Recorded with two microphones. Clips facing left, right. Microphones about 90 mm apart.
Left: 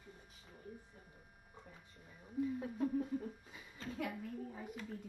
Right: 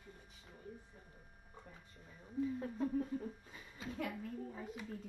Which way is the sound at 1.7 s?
5° left (ahead or behind).